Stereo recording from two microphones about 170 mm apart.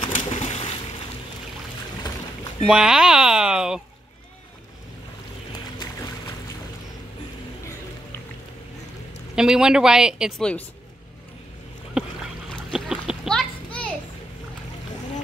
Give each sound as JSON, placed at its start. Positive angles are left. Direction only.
{"t": 0.2, "sound": "a sound", "side_deg": 35}
{"t": 2.6, "sound": "speech", "side_deg": 0}
{"t": 9.3, "sound": "speech", "side_deg": -5}
{"t": 12.4, "sound": "splash", "side_deg": 0}